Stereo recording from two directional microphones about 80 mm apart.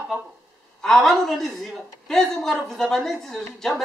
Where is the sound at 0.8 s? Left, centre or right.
Centre.